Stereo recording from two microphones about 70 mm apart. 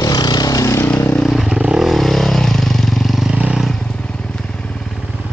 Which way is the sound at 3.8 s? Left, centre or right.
Centre.